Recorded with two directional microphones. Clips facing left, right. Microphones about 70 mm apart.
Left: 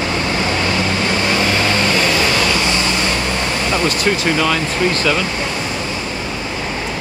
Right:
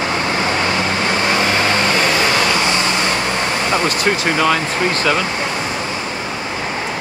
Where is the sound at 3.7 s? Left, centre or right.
Right.